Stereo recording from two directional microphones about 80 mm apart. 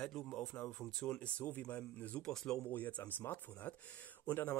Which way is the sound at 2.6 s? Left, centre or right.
Left.